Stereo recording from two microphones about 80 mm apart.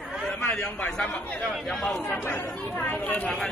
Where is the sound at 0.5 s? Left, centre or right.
Centre.